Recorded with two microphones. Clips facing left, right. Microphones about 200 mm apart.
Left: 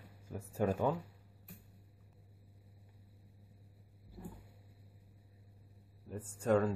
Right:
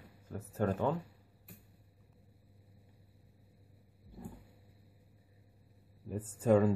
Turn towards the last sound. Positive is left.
turn(degrees=-5)  # may be behind; listen again after turning